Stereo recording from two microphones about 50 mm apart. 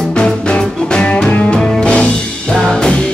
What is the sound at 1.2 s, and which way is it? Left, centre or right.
Music, left.